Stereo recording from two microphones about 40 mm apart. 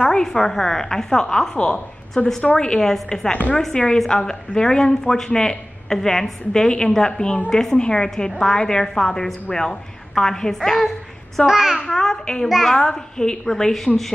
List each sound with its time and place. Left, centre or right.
0.0 s a woman's voice: centre
2.8 s a woman's voice: centre
10.7 s a woman's voice: centre
11.9 s a woman's voice: centre